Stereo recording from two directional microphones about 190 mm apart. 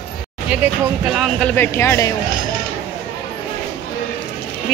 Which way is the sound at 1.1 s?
Centre (ahead or behind).